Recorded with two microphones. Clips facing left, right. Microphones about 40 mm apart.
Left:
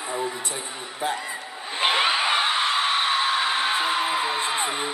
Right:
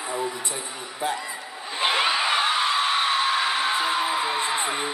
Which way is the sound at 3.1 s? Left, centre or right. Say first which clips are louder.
Even; centre.